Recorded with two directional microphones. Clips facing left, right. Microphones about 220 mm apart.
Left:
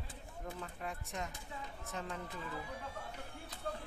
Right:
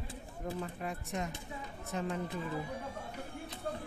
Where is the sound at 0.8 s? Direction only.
20° right (ahead or behind).